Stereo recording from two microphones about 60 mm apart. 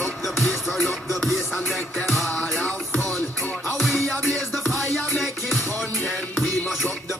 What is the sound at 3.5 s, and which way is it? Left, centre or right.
Music, left.